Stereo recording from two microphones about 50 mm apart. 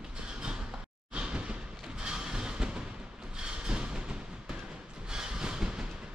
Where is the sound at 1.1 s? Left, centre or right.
Centre.